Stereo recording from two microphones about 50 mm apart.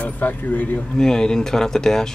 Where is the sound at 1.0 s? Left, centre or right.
Centre.